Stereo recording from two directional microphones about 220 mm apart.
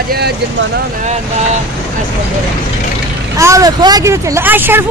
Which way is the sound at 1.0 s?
30° right (ahead or behind).